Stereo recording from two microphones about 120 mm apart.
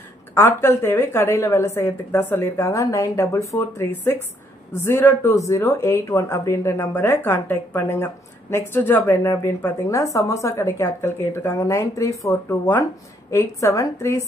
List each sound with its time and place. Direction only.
0.3 s speech: 20° left (ahead or behind)